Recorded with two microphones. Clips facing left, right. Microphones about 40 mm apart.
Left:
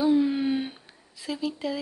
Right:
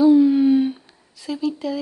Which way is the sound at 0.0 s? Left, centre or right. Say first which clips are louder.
Right 9 dB; centre.